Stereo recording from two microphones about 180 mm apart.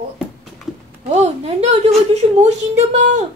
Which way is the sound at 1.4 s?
35° right (ahead or behind).